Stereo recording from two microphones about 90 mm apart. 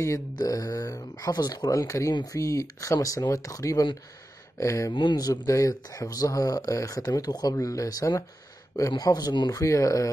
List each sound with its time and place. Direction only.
0.4 s speech: 40° left (ahead or behind)
4.9 s a man's voice: 60° left (ahead or behind)
5.2 s speech: 40° left (ahead or behind)
9.5 s speech: 35° left (ahead or behind)